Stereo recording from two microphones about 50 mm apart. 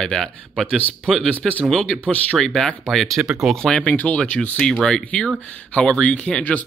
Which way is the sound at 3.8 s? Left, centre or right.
Left.